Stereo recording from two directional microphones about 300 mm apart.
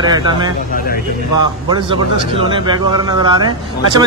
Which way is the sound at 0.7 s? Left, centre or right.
Left.